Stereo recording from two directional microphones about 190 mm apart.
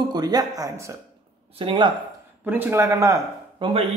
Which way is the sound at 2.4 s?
10° right (ahead or behind).